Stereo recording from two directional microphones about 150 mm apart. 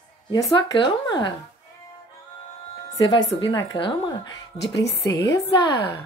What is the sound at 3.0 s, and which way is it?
A woman's voice, 30° left (ahead or behind).